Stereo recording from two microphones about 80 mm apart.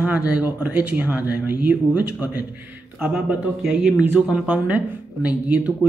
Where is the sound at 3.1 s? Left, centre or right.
Centre.